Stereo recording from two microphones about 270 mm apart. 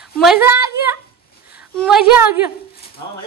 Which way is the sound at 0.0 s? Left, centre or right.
Centre.